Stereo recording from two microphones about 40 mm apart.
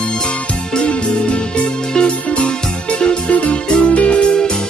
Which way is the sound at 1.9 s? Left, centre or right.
Left.